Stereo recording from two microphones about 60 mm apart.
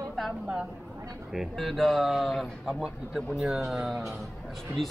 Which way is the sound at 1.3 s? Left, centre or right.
Centre.